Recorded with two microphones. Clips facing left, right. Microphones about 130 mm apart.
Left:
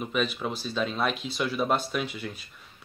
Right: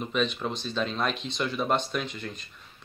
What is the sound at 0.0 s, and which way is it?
Speech, 5° left (ahead or behind).